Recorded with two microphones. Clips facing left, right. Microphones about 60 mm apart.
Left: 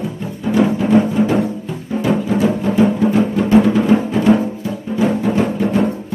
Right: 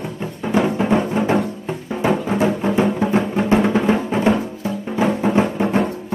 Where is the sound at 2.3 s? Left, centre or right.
Right.